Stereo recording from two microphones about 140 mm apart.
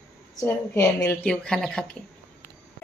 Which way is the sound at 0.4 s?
25° left (ahead or behind).